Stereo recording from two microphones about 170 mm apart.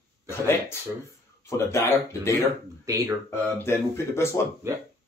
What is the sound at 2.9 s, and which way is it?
Speech, 20° right (ahead or behind).